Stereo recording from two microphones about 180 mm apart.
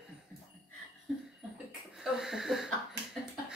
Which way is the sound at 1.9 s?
Centre (ahead or behind).